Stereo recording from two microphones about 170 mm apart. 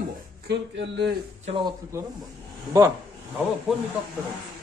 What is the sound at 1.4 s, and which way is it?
Speech, 30° right (ahead or behind).